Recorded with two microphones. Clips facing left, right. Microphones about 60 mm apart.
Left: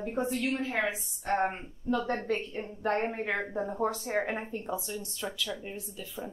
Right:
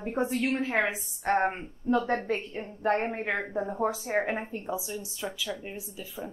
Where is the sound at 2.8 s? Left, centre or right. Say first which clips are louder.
Right 3 dB; centre.